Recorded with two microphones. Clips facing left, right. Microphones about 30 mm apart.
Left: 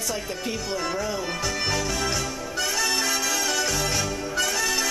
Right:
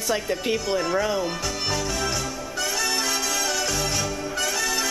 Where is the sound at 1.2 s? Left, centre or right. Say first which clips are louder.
Even; centre.